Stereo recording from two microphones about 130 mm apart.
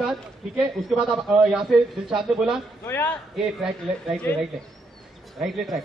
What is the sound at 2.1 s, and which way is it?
Speech, 5° right (ahead or behind).